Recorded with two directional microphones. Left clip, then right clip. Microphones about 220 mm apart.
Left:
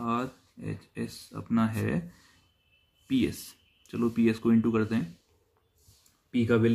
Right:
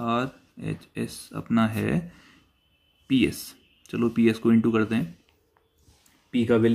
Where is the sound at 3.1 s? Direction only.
20° right (ahead or behind).